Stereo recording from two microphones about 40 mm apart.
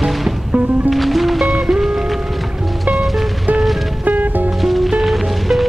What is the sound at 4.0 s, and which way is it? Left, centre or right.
Music, right.